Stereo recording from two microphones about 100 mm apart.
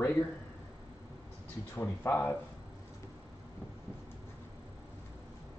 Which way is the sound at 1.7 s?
20° left (ahead or behind).